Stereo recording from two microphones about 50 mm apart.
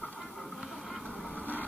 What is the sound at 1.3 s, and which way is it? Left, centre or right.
Vehicle, left.